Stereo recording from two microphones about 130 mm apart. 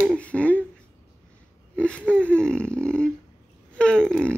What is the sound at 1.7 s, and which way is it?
Whimper, 10° left (ahead or behind).